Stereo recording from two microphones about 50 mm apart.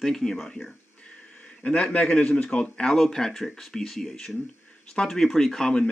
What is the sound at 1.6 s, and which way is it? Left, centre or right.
Speech, left.